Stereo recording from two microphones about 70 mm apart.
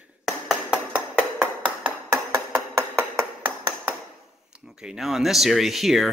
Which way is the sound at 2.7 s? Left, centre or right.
Right.